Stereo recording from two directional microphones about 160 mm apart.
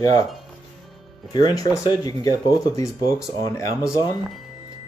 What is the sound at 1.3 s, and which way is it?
Speech, 25° left (ahead or behind).